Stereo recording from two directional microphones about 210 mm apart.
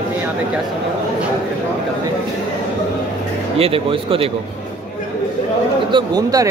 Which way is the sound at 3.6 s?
25° right (ahead or behind).